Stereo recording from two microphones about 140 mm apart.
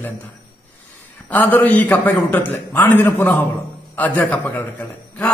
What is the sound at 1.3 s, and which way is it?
A man's voice, 10° left (ahead or behind).